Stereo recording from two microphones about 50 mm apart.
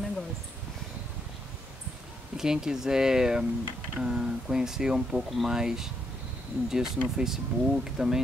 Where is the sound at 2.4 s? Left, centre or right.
Centre.